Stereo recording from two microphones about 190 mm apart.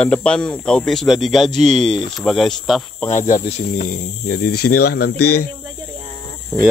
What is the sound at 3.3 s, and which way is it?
Speech, 45° left (ahead or behind).